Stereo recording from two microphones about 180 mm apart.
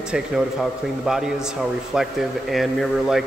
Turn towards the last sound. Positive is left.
turn(degrees=0)  # may be behind; listen again after turning